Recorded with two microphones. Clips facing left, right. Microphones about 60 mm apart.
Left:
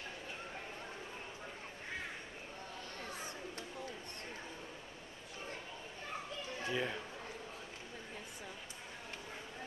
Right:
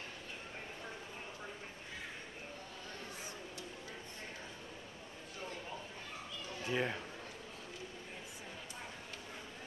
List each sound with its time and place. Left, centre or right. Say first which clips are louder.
6.7 s speech: right 2 dB; centre